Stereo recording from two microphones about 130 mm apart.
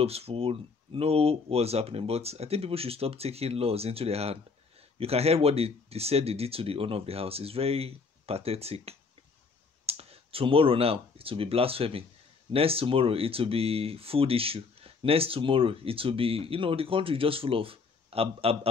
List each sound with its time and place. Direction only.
0.0 s speech: 50° right (ahead or behind)